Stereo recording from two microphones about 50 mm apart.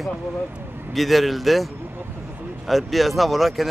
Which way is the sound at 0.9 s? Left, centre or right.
Centre.